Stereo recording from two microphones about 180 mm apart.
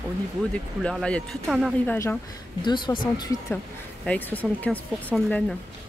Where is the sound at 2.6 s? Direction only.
25° left (ahead or behind).